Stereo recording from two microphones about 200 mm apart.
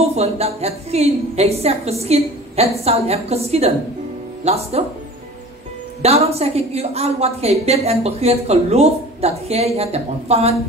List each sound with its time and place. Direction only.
0.0 s a woman's voice: 30° right (ahead or behind)
6.0 s a woman's voice: 30° right (ahead or behind)